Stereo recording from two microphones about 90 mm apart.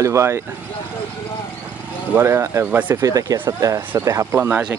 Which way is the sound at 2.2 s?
30° right (ahead or behind).